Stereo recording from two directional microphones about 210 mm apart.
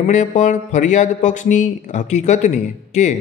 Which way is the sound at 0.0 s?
35° left (ahead or behind).